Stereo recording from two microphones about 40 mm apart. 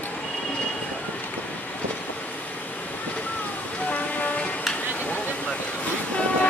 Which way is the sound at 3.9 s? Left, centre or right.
Left.